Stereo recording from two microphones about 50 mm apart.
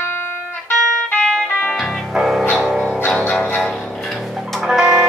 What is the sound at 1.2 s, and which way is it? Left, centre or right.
Music, centre.